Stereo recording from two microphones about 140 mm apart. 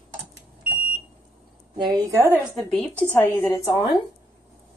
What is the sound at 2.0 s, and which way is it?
Speech, 20° right (ahead or behind).